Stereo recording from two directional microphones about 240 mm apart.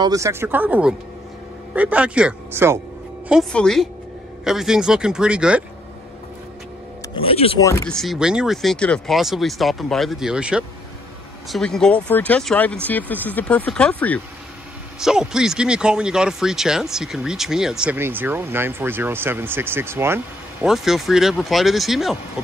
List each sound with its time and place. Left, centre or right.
0.0 s speech: centre
7.2 s speech: left
7.6 s speech: centre